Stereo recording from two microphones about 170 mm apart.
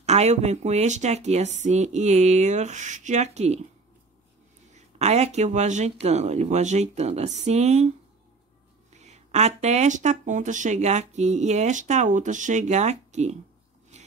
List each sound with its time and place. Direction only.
0.0 s speech: 40° right (ahead or behind)
4.7 s speech: 40° right (ahead or behind)
8.9 s speech: 40° right (ahead or behind)
13.9 s a sound: 40° right (ahead or behind)